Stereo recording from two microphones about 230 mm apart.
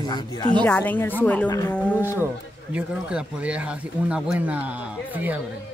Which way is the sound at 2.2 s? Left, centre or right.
Centre.